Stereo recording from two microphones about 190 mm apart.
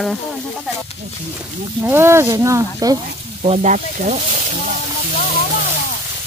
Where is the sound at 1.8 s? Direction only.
10° right (ahead or behind).